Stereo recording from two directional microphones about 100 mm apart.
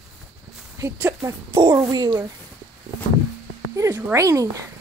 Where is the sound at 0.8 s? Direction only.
30° right (ahead or behind).